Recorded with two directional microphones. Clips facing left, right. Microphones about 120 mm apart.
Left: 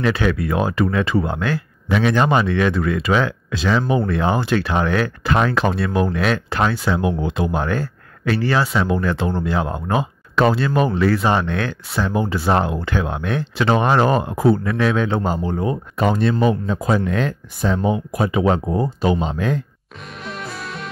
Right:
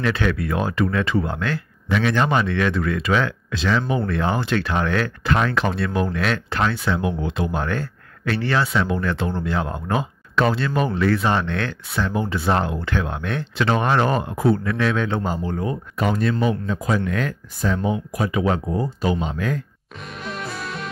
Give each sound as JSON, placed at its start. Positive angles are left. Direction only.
{"t": 0.0, "sound": "speech", "side_deg": 15}
{"t": 15.2, "sound": "speech", "side_deg": 20}
{"t": 20.2, "sound": "music", "side_deg": 0}